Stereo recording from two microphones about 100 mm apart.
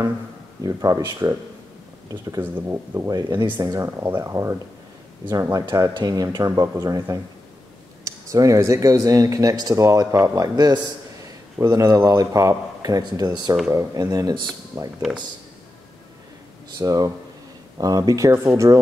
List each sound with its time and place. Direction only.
0.7 s speech: 35° right (ahead or behind)
2.4 s speech: 25° right (ahead or behind)
3.3 s speech: 50° right (ahead or behind)
3.6 s speech: 30° right (ahead or behind)
14.7 s speech: 30° right (ahead or behind)
16.7 s speech: 35° right (ahead or behind)